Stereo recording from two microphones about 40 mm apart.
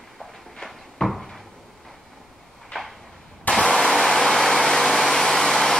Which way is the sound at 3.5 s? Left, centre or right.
Left.